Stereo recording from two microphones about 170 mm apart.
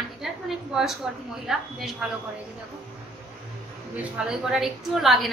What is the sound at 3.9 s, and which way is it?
A woman's voice, 5° right (ahead or behind).